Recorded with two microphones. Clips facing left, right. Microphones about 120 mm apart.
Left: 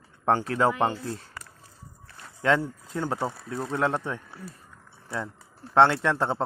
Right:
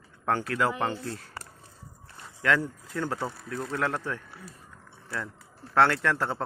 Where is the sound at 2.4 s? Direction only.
25° left (ahead or behind).